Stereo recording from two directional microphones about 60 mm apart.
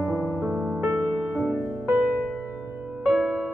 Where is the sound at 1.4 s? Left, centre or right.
Right.